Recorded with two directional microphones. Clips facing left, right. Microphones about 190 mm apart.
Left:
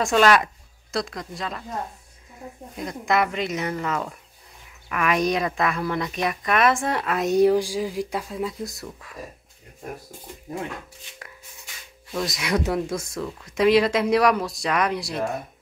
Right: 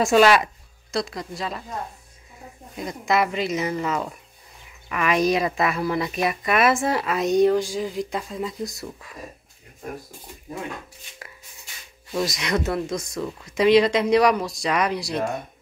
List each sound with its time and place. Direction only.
0.0 s speech: 5° right (ahead or behind)
2.7 s speech: centre (ahead or behind)
12.1 s speech: 5° right (ahead or behind)